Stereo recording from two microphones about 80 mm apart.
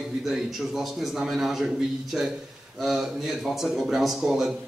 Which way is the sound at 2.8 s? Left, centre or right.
Centre.